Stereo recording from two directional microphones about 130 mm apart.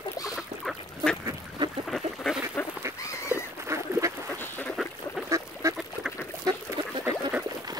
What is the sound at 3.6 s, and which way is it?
Duck, 20° right (ahead or behind).